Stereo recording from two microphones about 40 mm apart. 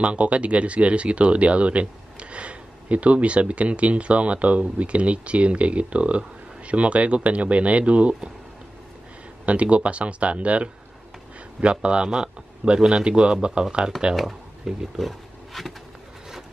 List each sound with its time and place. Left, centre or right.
0.0 s speech: right
9.5 s speech: right
14.7 s speech: centre
15.0 s wild animals: centre